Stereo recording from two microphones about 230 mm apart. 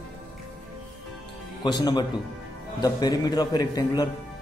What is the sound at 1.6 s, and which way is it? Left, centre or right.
A man's voice, centre.